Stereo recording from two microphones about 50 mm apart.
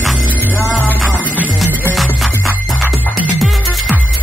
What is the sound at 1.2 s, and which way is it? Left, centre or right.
Music, right.